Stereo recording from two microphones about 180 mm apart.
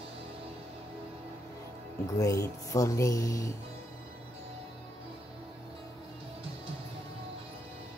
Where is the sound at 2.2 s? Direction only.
20° left (ahead or behind).